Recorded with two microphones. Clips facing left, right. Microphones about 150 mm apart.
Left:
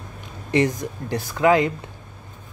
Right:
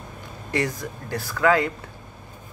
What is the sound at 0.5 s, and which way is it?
Speech, 20° left (ahead or behind).